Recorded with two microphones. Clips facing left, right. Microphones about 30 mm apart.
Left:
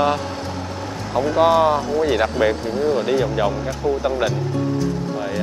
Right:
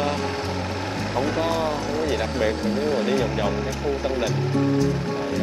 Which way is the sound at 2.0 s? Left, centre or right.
Centre.